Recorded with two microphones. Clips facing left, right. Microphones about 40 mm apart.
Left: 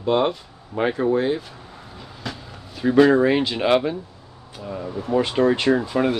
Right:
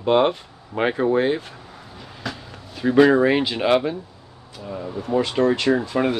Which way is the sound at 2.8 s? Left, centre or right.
Centre.